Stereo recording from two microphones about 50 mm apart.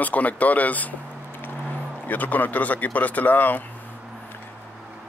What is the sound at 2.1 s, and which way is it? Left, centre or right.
Speech, left.